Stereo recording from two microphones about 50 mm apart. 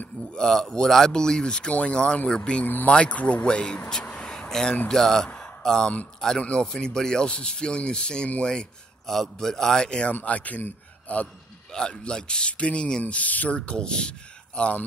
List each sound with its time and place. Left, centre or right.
0.3 s speech: centre
2.6 s speech: left
2.9 s speech: left
4.2 s a sound: centre
4.8 s speech: centre
10.2 s speech: left
13.0 s speech: left